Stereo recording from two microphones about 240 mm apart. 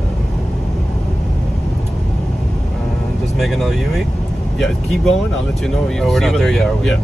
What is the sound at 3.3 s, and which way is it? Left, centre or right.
Speech, centre.